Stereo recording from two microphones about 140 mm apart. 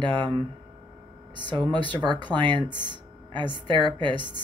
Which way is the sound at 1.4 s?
35° right (ahead or behind).